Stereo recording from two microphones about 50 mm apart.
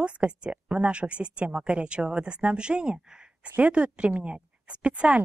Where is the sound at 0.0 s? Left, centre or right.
Right.